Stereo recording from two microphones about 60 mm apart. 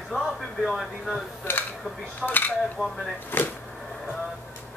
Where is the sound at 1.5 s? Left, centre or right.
Left.